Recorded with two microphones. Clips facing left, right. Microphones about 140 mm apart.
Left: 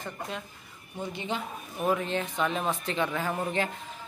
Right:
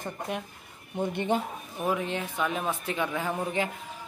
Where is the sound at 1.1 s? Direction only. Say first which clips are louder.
Right 7 dB; 55° right (ahead or behind).